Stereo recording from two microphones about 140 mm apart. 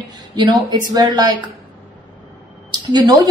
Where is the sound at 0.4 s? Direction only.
30° right (ahead or behind).